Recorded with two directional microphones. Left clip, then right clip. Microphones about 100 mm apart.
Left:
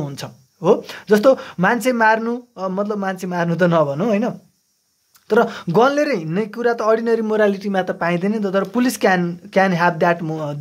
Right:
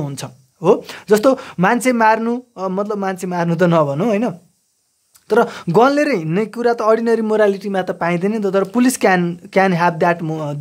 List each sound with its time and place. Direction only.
0.0 s speech: 40° right (ahead or behind)